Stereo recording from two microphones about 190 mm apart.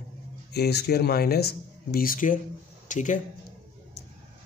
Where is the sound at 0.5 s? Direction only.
60° left (ahead or behind); by 3.2 s 40° left (ahead or behind).